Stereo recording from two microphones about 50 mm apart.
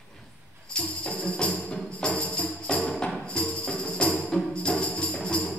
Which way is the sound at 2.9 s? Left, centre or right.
Centre.